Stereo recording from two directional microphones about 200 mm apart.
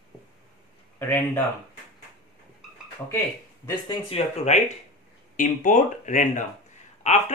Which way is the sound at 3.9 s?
30° left (ahead or behind).